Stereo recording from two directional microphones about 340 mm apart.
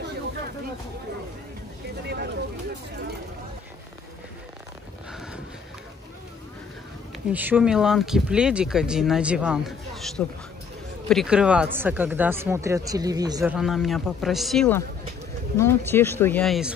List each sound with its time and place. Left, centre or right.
2.0 s speech: right
7.3 s speech: centre